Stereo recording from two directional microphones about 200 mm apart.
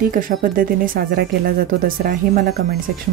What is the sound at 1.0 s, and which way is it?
Speech, 55° right (ahead or behind).